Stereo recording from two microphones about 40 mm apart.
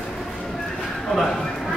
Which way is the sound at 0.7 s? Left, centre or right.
Centre.